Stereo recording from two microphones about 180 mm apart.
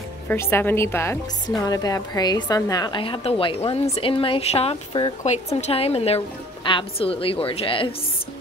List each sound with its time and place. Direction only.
0.3 s a woman's voice: 10° left (ahead or behind); by 7.9 s 30° left (ahead or behind)